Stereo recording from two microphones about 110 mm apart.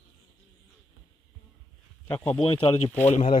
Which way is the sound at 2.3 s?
65° left (ahead or behind).